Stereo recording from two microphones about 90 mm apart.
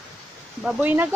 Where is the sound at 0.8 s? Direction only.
20° right (ahead or behind).